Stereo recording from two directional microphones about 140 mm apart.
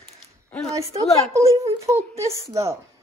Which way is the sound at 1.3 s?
20° right (ahead or behind).